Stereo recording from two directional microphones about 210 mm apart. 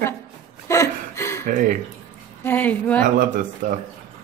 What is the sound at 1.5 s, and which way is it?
Speech, 40° right (ahead or behind).